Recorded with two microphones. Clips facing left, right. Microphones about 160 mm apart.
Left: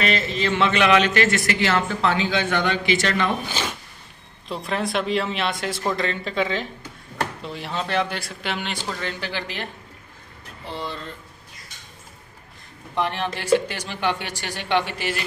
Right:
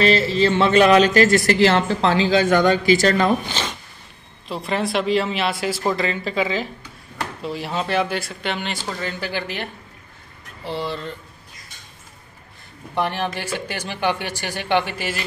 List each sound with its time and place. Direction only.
0.0 s a man's voice: 35° right (ahead or behind)
3.4 s speech: 10° left (ahead or behind)
4.5 s speech: centre (ahead or behind)
12.9 s speech: 5° right (ahead or behind)